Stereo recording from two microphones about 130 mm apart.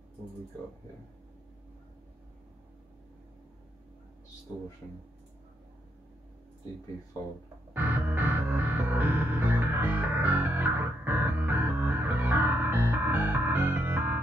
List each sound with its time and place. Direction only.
7.2 s speech: 25° left (ahead or behind)
7.7 s music: 15° right (ahead or behind)